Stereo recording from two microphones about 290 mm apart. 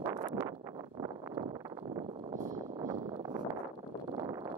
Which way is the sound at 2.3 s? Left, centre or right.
Right.